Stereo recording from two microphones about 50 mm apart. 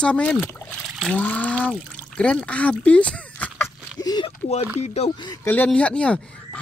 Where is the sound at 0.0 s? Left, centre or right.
Left.